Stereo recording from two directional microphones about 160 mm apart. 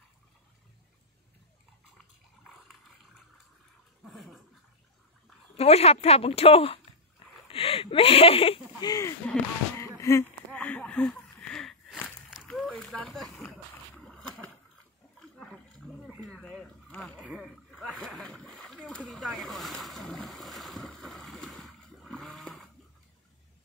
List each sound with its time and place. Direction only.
4.0 s dog: centre (ahead or behind)
5.6 s speech: 40° left (ahead or behind)
9.2 s speech: 10° left (ahead or behind)
9.8 s a sound: 20° left (ahead or behind)
10.5 s a sound: 10° left (ahead or behind)
15.3 s roaring cats: 5° left (ahead or behind)
16.2 s rowboat: centre (ahead or behind)